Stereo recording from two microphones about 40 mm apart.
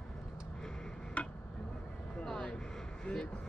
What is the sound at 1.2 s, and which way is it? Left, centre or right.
Tick-tock, left.